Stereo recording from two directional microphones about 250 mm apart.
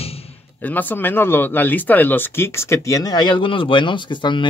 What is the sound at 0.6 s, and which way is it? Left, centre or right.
Speech, centre.